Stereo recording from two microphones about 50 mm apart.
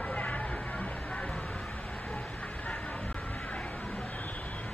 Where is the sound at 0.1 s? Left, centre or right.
Left.